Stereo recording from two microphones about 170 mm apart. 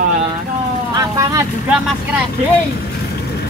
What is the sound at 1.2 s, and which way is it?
Speech, 20° right (ahead or behind).